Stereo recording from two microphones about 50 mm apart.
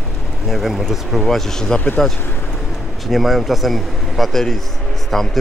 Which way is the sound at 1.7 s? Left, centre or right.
Left.